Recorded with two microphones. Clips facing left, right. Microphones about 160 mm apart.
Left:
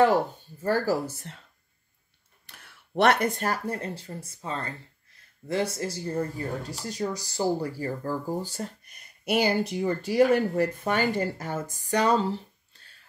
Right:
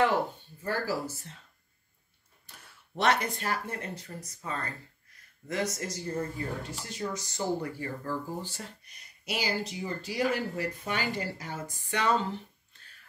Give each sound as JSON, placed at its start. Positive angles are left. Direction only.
{"t": 0.0, "sound": "speech", "side_deg": 40}
{"t": 2.6, "sound": "speech", "side_deg": 65}